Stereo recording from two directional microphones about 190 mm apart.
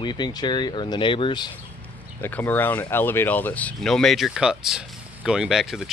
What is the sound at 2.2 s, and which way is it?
Speech, 10° left (ahead or behind).